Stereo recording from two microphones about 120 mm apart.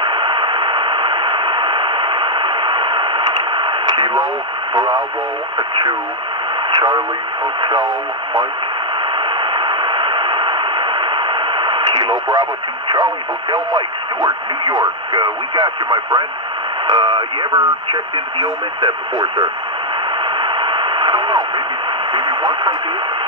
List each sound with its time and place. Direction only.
0.0 s white noise: 45° right (ahead or behind)
5.6 s speech: 35° right (ahead or behind)
9.2 s white noise: 45° right (ahead or behind)
14.6 s speech: 35° right (ahead or behind)
20.3 s radio: 45° right (ahead or behind)
22.1 s speech: 40° right (ahead or behind)